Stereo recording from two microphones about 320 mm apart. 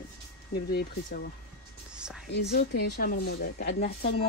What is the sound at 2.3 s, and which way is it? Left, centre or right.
Speech, left.